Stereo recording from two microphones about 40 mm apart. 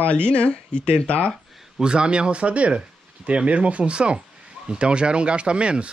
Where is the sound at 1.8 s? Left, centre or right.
Right.